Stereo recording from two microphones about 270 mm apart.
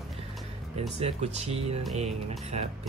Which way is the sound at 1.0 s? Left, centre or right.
Right.